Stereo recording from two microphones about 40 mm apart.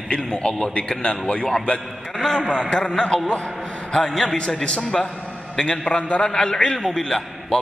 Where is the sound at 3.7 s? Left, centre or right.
Left.